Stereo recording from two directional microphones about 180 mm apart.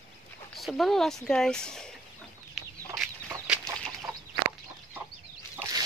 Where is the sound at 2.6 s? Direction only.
Centre (ahead or behind).